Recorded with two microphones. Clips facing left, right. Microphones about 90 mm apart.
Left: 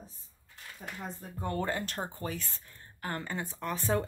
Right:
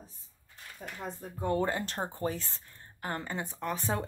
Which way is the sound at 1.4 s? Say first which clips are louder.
Right 3 dB; 15° right (ahead or behind).